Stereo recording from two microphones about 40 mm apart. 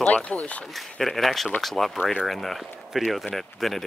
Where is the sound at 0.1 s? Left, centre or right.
Left.